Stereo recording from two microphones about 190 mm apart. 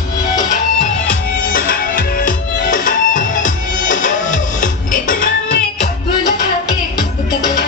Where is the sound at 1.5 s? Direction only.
50° left (ahead or behind).